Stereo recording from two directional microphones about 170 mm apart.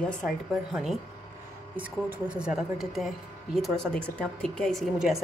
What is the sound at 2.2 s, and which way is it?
A woman's voice, 5° right (ahead or behind).